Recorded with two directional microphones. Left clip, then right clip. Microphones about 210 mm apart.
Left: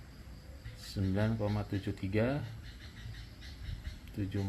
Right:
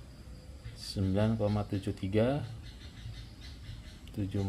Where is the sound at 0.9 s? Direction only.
15° right (ahead or behind).